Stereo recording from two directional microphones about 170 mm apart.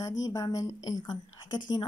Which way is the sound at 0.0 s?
20° left (ahead or behind).